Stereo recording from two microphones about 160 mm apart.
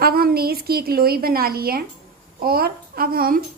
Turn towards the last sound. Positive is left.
turn(degrees=-65)  # may be behind; listen again after turning